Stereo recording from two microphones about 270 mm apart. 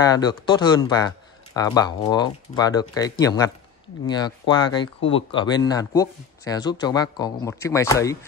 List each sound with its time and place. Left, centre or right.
0.0 s speech: centre